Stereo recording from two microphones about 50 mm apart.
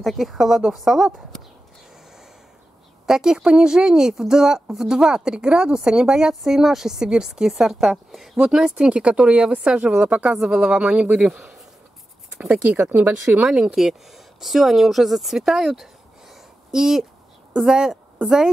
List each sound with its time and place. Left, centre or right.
0.0 s speech: centre
3.1 s speech: centre
10.7 s speech: right
12.4 s speech: right
13.5 s speech: centre
13.7 s a woman's voice: centre